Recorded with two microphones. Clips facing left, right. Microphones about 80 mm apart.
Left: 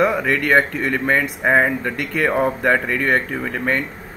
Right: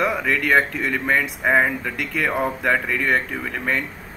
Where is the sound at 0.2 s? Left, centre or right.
Centre.